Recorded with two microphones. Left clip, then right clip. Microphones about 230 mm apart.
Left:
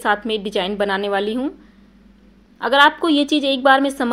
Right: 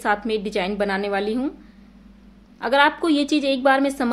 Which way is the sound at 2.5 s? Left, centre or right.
Centre.